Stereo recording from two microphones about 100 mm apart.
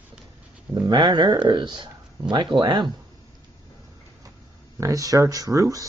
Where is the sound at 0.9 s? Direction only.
50° right (ahead or behind).